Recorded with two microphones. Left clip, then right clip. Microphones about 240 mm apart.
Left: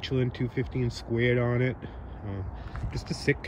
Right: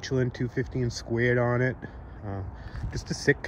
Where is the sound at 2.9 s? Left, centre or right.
Centre.